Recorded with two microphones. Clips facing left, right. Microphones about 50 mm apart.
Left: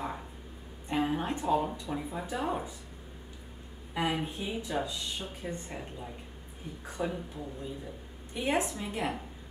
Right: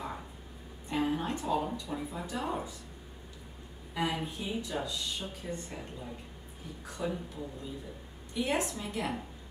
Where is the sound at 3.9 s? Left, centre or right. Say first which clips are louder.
Left 2 dB; left.